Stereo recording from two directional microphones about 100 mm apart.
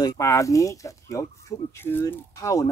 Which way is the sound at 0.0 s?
35° left (ahead or behind).